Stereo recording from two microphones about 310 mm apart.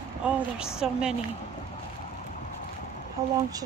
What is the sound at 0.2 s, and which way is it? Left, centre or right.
Speech, centre.